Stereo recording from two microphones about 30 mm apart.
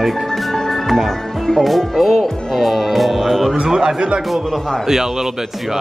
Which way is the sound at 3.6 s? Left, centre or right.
Right.